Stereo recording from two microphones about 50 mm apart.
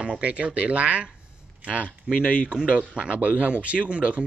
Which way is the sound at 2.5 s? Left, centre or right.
Centre.